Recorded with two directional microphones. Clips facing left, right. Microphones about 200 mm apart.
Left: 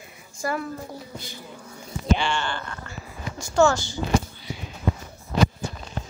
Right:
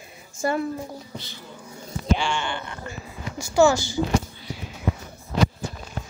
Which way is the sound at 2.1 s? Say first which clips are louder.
Even; 10° right (ahead or behind).